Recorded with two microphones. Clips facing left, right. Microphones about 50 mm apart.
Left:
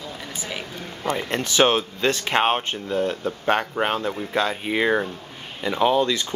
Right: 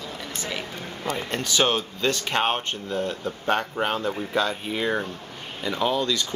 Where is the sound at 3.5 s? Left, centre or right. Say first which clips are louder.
Left 2 dB; left.